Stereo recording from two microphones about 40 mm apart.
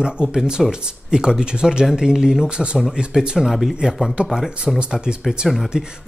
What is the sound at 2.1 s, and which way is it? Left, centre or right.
Speech, centre.